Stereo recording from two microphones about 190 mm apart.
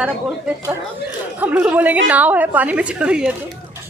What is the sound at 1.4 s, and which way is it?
A woman's voice, 10° right (ahead or behind).